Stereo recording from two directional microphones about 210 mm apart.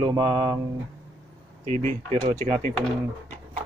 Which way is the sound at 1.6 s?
30° right (ahead or behind).